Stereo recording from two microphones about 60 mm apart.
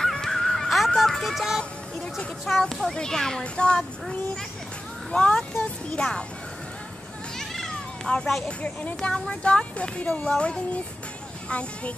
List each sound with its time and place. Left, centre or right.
0.0 s honk: centre
2.0 s a child's voice: centre
7.3 s cat: centre
8.5 s speech: left